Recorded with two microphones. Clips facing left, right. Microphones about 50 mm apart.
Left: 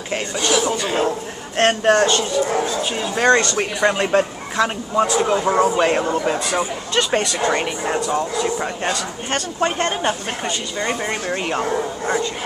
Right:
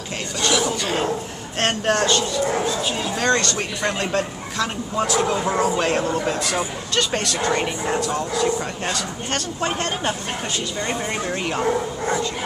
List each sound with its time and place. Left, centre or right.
1.6 s speech: centre
4.9 s speech: centre